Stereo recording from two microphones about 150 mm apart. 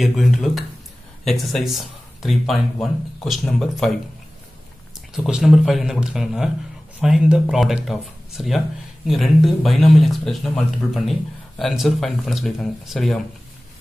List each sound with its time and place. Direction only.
0.0 s speech: centre (ahead or behind)
5.1 s speech: centre (ahead or behind)